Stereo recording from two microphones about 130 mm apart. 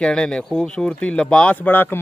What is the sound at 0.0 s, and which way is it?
Speech, 5° left (ahead or behind).